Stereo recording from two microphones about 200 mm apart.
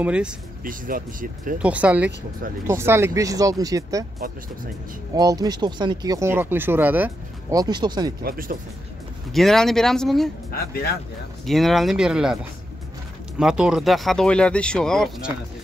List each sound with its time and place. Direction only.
0.0 s speech: 5° right (ahead or behind)
0.7 s speech: 45° right (ahead or behind)
1.6 s speech: 5° right (ahead or behind)
5.1 s speech: 20° right (ahead or behind)
8.2 s speech: 45° right (ahead or behind)
9.3 s speech: centre (ahead or behind)
10.5 s speech: 50° left (ahead or behind)
11.4 s speech: centre (ahead or behind)
13.4 s speech: 5° right (ahead or behind)